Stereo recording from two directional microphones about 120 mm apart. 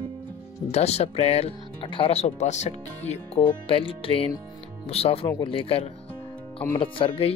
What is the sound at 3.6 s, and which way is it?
Music, 50° left (ahead or behind).